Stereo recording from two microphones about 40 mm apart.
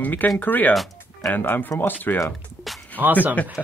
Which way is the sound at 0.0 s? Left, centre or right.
Left.